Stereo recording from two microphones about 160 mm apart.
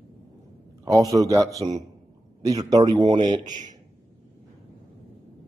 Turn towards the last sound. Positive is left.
turn(degrees=-50)  # may be behind; listen again after turning